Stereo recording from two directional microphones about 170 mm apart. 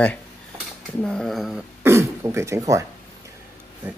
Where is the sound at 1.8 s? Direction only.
15° right (ahead or behind).